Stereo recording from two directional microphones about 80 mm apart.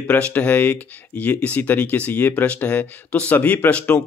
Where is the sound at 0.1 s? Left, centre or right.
Centre.